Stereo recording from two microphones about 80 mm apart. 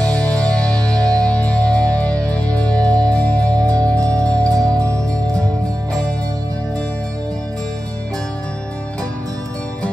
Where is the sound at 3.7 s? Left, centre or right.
Right.